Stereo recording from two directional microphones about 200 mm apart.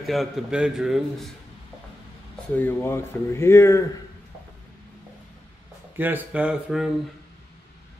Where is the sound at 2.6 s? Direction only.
10° left (ahead or behind).